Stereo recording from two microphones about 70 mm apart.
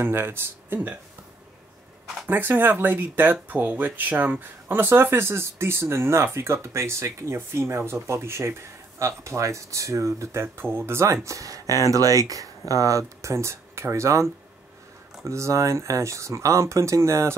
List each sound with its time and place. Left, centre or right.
0.0 s speech: right
2.2 s speech: right
11.2 s speech: right